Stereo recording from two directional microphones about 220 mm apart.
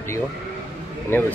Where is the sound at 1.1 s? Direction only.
10° left (ahead or behind).